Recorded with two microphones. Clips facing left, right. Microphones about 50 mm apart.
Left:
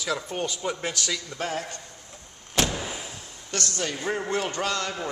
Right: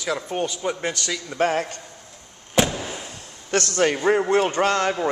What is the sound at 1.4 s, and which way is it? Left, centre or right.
Speech, right.